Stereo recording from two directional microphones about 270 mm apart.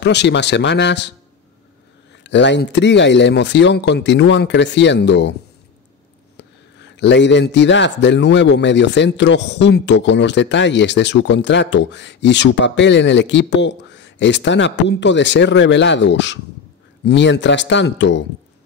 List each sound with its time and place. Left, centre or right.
0.0 s a man's voice: left
2.2 s a man's voice: left
7.0 s a man's voice: left